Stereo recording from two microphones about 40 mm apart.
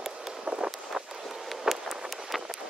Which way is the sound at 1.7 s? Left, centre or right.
Right.